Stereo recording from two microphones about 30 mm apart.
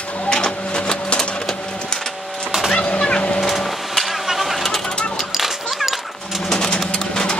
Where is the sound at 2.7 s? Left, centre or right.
Left.